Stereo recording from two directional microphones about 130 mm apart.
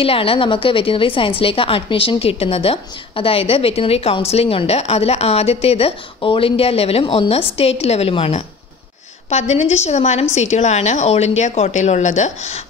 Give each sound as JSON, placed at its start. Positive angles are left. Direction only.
{"t": 0.0, "sound": "a woman's voice", "side_deg": 45}
{"t": 9.3, "sound": "a woman's voice", "side_deg": 60}